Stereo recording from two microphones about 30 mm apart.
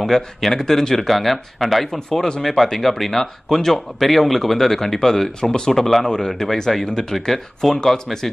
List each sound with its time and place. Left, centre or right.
0.0 s speech: centre
2.4 s speech: centre
6.0 s speech: left
6.9 s speech: left
7.2 s speech: centre